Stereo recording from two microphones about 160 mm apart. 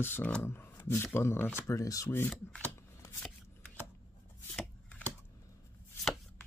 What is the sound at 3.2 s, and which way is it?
Shuffling cards, 10° left (ahead or behind).